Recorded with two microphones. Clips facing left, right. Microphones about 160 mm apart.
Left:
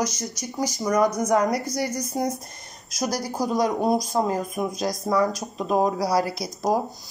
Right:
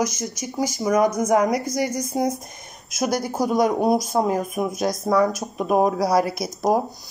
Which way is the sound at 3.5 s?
10° right (ahead or behind).